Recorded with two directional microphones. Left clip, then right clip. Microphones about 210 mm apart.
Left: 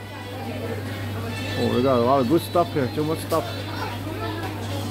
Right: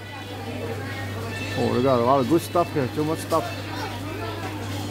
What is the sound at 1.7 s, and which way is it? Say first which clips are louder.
Speech: even; 5° right (ahead or behind).